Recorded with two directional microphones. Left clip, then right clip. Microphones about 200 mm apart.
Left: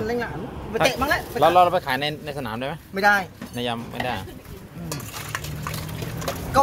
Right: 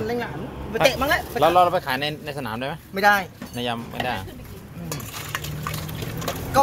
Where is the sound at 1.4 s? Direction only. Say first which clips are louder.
Left 1 dB; 10° left (ahead or behind).